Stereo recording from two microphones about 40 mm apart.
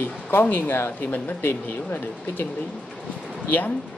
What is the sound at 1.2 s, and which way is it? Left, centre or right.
Speech, left.